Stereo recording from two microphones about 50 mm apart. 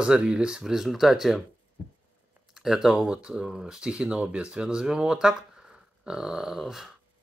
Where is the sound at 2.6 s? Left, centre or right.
Centre.